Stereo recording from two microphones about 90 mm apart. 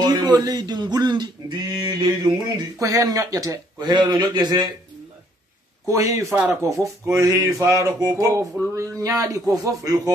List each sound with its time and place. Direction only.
0.0 s a sound: 50° right (ahead or behind)
2.4 s a sound: 40° right (ahead or behind)
3.9 s a man's voice: 55° right (ahead or behind)
5.9 s speech: 35° right (ahead or behind)
6.3 s speech: 25° right (ahead or behind)
6.6 s speech: 35° right (ahead or behind)